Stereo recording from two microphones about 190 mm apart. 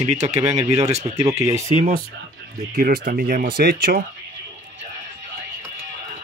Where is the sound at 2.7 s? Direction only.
55° right (ahead or behind).